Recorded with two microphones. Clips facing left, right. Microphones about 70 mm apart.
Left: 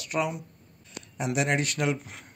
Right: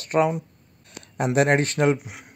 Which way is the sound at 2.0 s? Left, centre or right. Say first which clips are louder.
Right 3 dB; centre.